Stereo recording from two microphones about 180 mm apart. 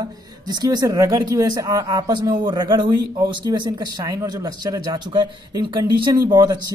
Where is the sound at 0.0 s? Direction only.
25° right (ahead or behind).